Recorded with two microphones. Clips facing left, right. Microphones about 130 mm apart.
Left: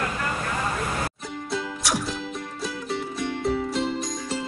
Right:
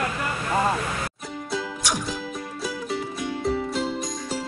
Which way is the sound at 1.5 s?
Centre (ahead or behind).